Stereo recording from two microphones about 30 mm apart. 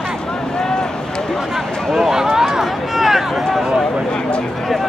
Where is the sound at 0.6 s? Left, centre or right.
Left.